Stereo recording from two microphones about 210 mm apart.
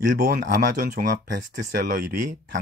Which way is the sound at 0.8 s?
45° right (ahead or behind).